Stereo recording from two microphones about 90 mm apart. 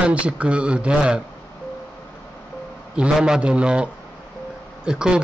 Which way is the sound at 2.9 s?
10° right (ahead or behind).